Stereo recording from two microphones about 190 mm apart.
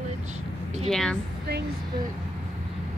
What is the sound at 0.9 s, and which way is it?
Speech, centre (ahead or behind).